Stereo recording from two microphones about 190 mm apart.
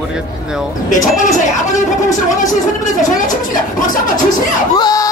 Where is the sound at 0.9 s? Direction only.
40° left (ahead or behind).